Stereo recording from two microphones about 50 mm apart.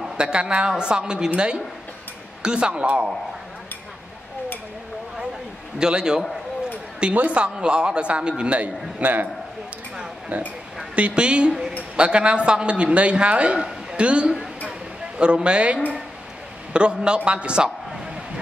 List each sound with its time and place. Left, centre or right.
0.2 s a man's voice: right
5.8 s a man's voice: centre
7.2 s a man's voice: right
10.3 s a man's voice: right
10.8 s a man's voice: right